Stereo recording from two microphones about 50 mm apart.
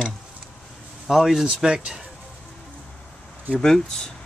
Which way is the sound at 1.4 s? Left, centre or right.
Centre.